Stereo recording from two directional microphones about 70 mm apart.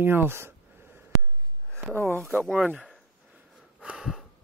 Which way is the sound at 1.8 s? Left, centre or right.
Right.